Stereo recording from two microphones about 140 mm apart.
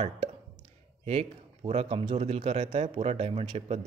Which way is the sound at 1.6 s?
45° right (ahead or behind).